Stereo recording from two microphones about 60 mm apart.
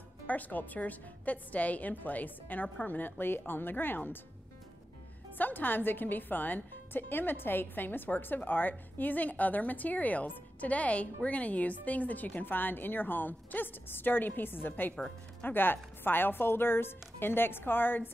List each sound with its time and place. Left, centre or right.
0.3 s a woman's voice: left
5.4 s speech: left